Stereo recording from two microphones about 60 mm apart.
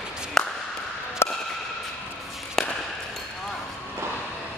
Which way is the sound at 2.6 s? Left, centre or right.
Centre.